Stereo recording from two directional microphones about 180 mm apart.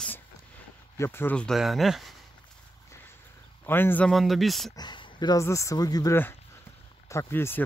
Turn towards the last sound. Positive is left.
turn(degrees=15)  # may be behind; listen again after turning